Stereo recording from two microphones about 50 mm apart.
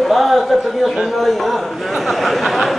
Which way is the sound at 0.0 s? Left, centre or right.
Centre.